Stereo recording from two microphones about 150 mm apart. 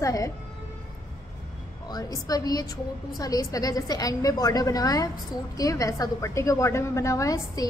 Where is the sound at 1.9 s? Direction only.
25° left (ahead or behind).